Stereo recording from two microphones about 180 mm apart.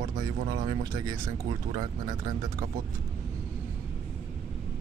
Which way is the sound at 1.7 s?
25° right (ahead or behind).